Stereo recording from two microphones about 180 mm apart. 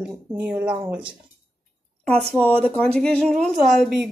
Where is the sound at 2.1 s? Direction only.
5° left (ahead or behind).